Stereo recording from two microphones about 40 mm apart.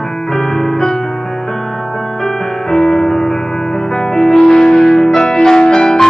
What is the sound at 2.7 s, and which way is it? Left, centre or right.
Music, centre.